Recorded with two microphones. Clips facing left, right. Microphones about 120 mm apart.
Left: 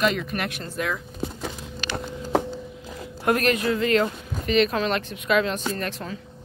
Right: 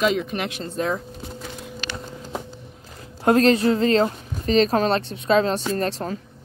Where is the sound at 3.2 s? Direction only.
30° right (ahead or behind).